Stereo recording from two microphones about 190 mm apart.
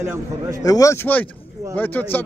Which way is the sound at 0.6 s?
20° left (ahead or behind).